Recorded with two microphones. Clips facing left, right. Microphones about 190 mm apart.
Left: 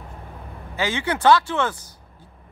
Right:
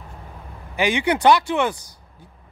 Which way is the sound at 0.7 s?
15° right (ahead or behind).